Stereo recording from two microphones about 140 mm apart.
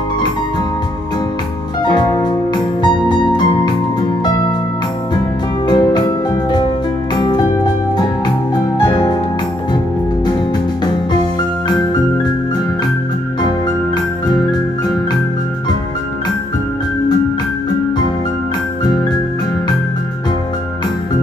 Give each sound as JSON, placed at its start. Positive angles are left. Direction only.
{"t": 1.8, "sound": "music", "side_deg": 30}
{"t": 5.7, "sound": "music", "side_deg": 30}
{"t": 7.2, "sound": "music", "side_deg": 30}